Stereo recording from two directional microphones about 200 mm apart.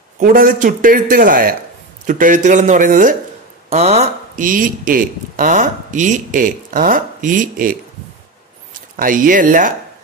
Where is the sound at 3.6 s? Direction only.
30° right (ahead or behind).